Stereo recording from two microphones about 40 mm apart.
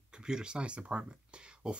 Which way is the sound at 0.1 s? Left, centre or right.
Centre.